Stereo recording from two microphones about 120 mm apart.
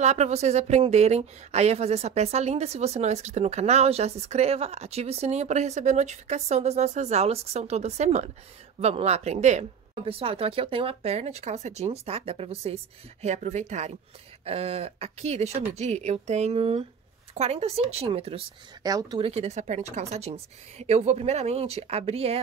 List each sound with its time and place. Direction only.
0.0 s speech: 70° right (ahead or behind)
10.0 s speech: 50° right (ahead or behind); by 13.9 s 75° right (ahead or behind)
14.4 s speech: 55° right (ahead or behind)
18.8 s speech: 30° right (ahead or behind)
19.1 s speech: 55° right (ahead or behind)